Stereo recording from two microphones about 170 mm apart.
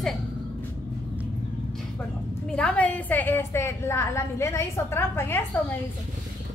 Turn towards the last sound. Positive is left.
turn(degrees=15)  # may be behind; listen again after turning